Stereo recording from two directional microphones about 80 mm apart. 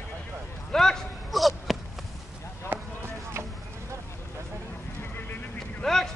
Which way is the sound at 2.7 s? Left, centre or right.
Right.